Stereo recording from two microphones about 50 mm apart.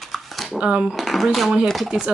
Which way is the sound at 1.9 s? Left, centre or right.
Centre.